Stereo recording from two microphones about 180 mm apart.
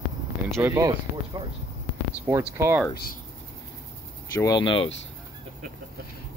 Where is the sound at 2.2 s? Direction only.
15° right (ahead or behind).